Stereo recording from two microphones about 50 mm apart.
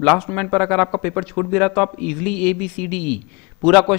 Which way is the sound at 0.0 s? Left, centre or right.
Centre.